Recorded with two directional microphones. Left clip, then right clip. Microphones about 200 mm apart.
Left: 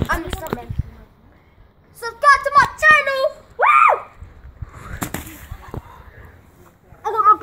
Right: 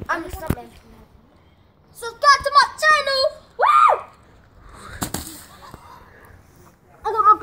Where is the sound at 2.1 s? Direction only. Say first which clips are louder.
Left 2 dB; centre (ahead or behind).